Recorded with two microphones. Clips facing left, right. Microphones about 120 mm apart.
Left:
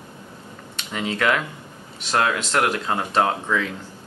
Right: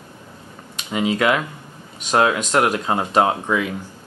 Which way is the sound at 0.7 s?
15° right (ahead or behind).